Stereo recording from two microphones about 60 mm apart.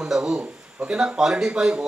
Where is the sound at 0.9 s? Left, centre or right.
Centre.